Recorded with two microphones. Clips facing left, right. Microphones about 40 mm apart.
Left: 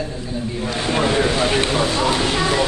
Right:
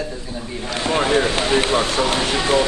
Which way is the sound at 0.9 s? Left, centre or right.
Right.